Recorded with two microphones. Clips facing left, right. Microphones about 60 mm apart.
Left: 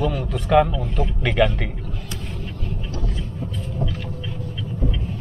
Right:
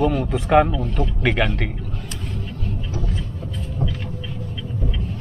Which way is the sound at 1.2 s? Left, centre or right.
Centre.